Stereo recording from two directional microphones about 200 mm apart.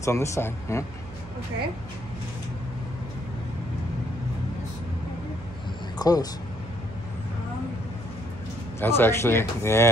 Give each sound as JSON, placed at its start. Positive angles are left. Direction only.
{"t": 0.0, "sound": "speech", "side_deg": 15}
{"t": 5.9, "sound": "a sound", "side_deg": 20}
{"t": 8.7, "sound": "speech", "side_deg": 10}